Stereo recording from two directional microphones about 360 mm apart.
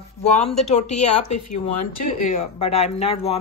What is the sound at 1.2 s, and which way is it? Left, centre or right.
Speech, left.